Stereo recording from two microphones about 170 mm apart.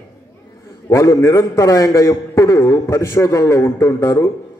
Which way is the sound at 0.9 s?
20° left (ahead or behind).